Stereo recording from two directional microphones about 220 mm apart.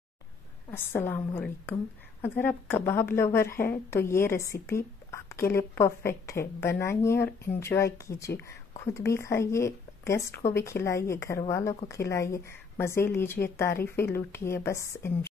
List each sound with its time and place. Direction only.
0.7 s speech: 10° left (ahead or behind)